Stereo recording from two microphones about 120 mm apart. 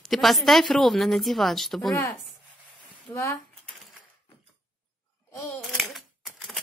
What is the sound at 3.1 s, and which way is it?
Speech, 20° left (ahead or behind).